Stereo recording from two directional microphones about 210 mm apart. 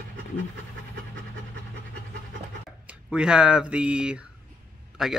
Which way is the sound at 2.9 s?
5° right (ahead or behind).